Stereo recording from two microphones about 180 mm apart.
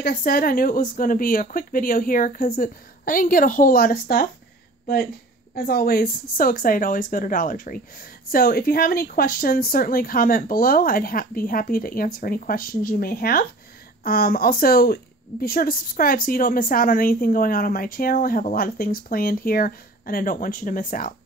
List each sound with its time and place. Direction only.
0.0 s speech: 55° left (ahead or behind)
5.5 s speech: 55° left (ahead or behind)